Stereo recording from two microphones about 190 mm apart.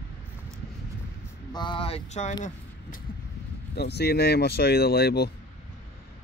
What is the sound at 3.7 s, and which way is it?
Speech, 60° left (ahead or behind).